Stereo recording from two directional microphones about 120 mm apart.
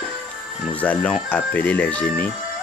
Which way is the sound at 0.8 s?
10° left (ahead or behind).